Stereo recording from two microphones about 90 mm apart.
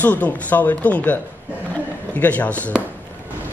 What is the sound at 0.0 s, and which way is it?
Speech, 15° left (ahead or behind).